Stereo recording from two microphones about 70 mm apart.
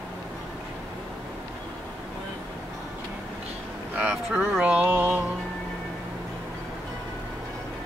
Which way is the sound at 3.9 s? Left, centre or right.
Centre.